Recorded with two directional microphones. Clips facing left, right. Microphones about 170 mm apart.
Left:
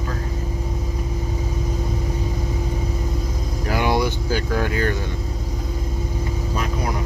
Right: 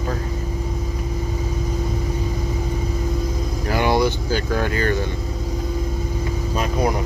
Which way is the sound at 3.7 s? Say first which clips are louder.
Right 2 dB; 10° left (ahead or behind).